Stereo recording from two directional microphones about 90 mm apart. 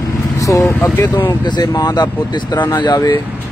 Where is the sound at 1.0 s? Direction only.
25° left (ahead or behind).